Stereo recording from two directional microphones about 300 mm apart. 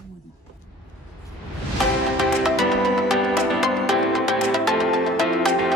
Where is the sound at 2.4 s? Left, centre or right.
Centre.